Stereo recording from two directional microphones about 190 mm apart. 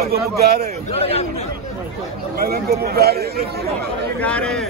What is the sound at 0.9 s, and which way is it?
Speech, 30° left (ahead or behind).